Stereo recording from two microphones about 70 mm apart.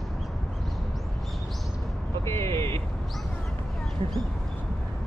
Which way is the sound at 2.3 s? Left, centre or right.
Left.